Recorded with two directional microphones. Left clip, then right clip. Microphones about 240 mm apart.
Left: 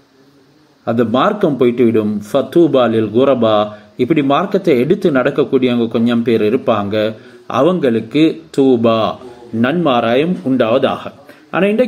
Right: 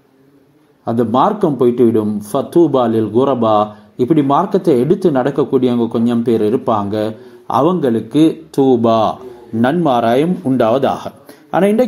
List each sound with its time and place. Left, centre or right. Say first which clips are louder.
0.8 s speech: even; centre